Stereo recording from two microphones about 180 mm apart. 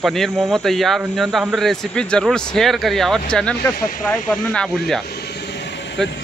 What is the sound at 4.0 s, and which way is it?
Speech, 5° left (ahead or behind).